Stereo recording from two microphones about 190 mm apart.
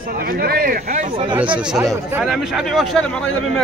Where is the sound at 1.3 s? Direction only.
5° right (ahead or behind).